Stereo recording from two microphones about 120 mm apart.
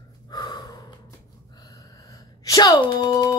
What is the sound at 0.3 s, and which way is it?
Gasp, 35° left (ahead or behind).